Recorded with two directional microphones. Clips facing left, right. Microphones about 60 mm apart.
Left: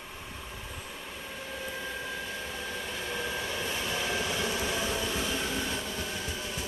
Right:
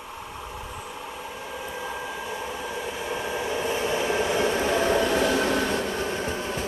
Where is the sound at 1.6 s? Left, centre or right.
Centre.